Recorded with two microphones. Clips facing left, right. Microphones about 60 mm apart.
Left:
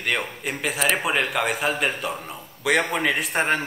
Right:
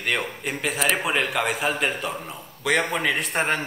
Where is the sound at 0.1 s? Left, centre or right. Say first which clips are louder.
Even; centre.